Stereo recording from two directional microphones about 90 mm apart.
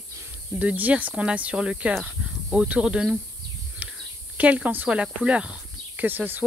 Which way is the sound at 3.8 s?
15° right (ahead or behind).